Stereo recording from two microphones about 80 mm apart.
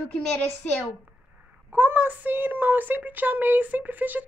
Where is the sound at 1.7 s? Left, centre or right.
Right.